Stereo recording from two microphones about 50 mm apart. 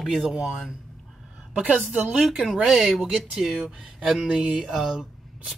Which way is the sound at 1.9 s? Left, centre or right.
Centre.